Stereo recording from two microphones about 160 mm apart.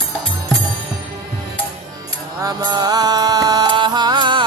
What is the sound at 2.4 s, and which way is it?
Music, 25° right (ahead or behind).